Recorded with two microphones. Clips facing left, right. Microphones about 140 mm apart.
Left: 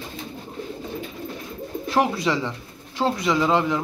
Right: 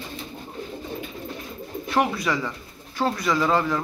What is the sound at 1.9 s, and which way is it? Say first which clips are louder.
Speech: left 2 dB; 25° left (ahead or behind).